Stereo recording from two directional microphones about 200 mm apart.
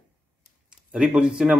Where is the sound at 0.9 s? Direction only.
5° right (ahead or behind).